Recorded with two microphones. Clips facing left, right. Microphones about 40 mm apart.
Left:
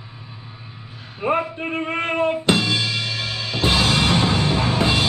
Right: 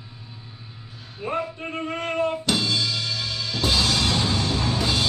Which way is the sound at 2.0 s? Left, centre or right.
Left.